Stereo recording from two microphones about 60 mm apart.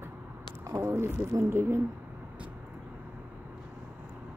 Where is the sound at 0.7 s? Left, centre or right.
Right.